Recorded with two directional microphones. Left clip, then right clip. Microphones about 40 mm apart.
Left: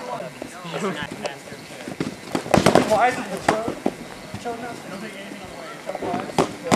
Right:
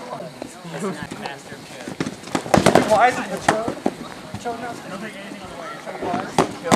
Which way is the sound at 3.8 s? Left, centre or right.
Centre.